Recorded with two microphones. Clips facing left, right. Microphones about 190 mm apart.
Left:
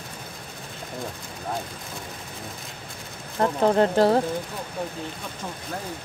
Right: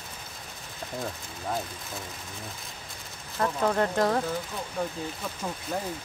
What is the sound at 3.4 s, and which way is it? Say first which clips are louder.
Speech: left 6 dB; 30° left (ahead or behind).